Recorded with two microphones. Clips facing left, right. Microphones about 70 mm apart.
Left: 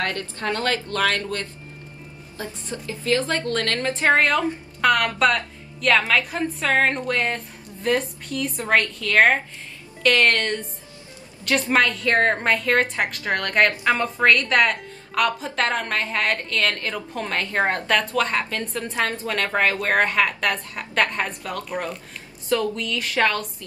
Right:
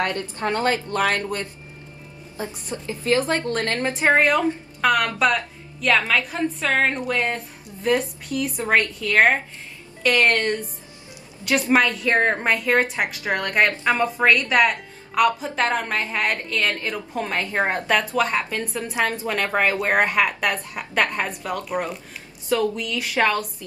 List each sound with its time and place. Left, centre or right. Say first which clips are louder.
0.0 s a woman's voice: right 2 dB; right
2.3 s a woman's voice: right 2 dB; right
4.8 s a woman's voice: left 1 dB; centre